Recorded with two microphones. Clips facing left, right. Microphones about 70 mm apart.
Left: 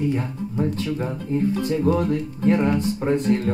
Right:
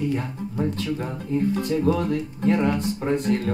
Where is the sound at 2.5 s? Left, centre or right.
Left.